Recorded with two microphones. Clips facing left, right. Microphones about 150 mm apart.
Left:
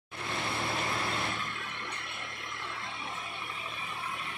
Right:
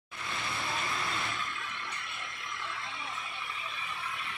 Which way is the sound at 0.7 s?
55° left (ahead or behind).